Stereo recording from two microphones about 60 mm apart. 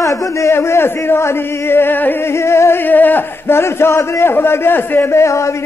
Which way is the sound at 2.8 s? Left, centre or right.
Left.